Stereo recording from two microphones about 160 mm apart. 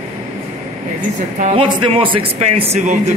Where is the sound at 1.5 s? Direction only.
35° right (ahead or behind).